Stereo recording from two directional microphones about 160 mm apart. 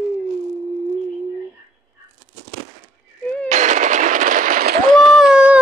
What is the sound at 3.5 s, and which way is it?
Firecracker, 50° right (ahead or behind).